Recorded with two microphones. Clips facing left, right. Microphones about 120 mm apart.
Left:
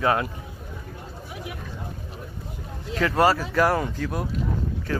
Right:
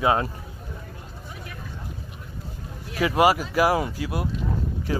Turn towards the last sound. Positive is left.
turn(degrees=-10)  # may be behind; listen again after turning